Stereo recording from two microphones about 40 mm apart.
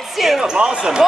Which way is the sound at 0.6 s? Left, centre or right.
Right.